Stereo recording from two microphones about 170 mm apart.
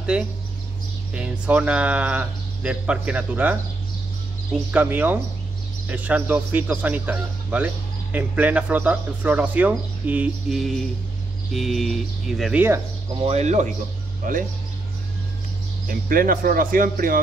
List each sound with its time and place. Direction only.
0.1 s speech: 5° right (ahead or behind)
4.6 s speech: 10° right (ahead or behind)
13.2 s speech: 40° right (ahead or behind)
15.9 s speech: 55° right (ahead or behind)